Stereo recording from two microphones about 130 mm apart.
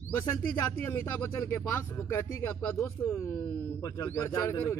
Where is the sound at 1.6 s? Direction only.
20° left (ahead or behind).